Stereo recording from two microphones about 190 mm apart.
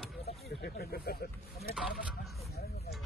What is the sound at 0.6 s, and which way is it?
Speech, 55° left (ahead or behind).